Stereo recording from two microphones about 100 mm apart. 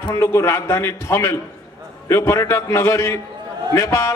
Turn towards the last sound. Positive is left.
turn(degrees=30)  # may be behind; listen again after turning